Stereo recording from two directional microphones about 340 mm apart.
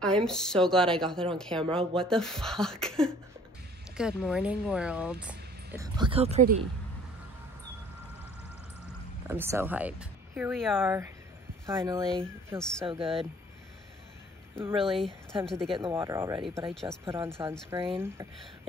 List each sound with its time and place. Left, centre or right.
0.0 s speech: centre
9.3 s speech: centre
12.1 s speech: centre
12.8 s speech: centre
14.6 s speech: centre
14.9 s speech: centre
15.7 s speech: centre